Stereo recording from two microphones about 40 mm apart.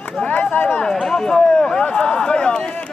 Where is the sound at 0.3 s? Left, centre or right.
Left.